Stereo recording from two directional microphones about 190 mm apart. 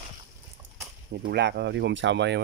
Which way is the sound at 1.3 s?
65° right (ahead or behind).